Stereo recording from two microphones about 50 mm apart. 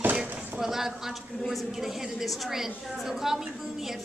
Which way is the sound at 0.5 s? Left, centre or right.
Centre.